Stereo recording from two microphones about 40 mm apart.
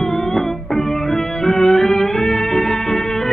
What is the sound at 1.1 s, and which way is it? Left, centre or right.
Music, centre.